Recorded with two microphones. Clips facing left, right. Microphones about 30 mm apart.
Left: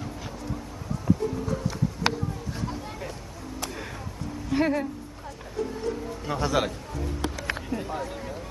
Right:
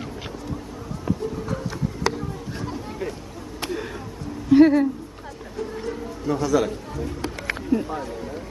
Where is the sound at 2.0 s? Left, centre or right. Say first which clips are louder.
Right 2 dB; left.